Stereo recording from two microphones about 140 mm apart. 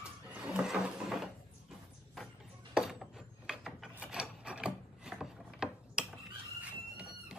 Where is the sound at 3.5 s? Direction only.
5° right (ahead or behind).